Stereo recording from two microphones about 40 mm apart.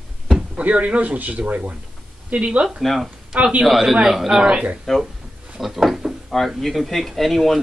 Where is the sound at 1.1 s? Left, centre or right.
Right.